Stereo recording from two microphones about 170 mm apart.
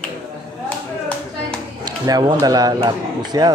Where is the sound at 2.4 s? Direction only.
20° right (ahead or behind).